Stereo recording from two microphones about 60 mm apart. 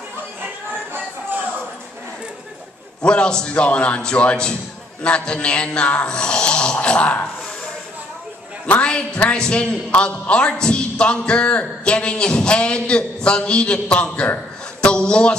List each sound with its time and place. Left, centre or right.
0.9 s a sound: right
3.0 s a man's voice: centre
8.6 s a man's voice: left